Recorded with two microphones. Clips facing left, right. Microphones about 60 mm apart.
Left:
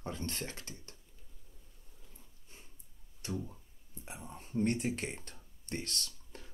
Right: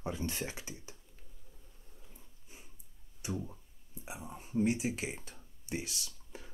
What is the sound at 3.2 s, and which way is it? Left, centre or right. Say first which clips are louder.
Speech: right 1 dB; centre.